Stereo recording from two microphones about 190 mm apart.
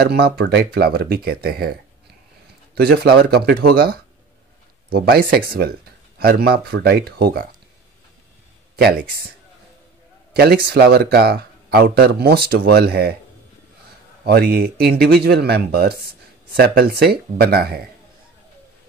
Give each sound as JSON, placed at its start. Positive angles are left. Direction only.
{"t": 0.0, "sound": "speech", "side_deg": -55}
{"t": 10.3, "sound": "speech", "side_deg": -55}
{"t": 14.2, "sound": "speech", "side_deg": -55}